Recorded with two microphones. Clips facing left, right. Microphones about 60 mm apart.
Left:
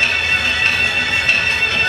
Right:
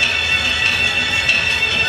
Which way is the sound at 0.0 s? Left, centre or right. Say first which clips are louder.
Left 1 dB; left.